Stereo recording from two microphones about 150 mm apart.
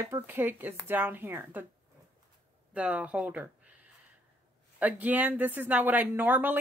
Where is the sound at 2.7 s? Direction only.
10° right (ahead or behind).